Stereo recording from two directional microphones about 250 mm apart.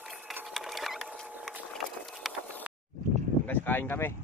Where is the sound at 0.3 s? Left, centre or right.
Centre.